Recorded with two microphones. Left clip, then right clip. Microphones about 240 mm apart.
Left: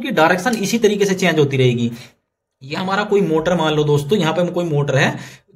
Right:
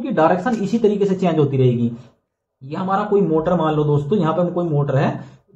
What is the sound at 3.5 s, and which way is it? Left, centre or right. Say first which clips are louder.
Speech: left 2 dB; left.